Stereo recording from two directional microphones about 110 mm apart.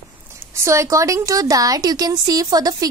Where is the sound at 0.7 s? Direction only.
30° right (ahead or behind).